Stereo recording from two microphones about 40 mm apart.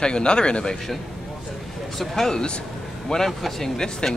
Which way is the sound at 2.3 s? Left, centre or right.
Left.